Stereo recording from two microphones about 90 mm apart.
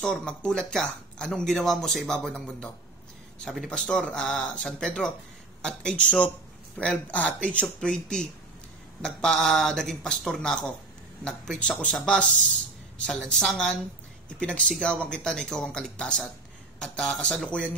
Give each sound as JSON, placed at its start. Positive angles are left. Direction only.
{"t": 0.5, "sound": "speech", "side_deg": 10}